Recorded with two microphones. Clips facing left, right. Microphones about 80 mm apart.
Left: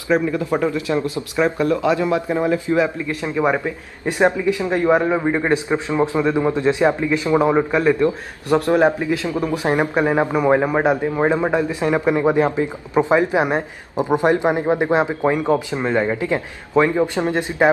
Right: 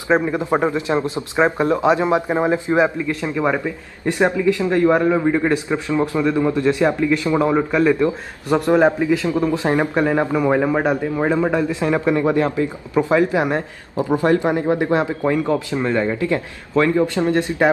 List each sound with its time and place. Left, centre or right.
0.1 s a man's voice: right
3.2 s a man's voice: centre
8.0 s a man's voice: centre
9.4 s a man's voice: centre